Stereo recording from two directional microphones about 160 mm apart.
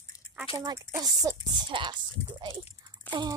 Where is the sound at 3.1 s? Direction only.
25° right (ahead or behind).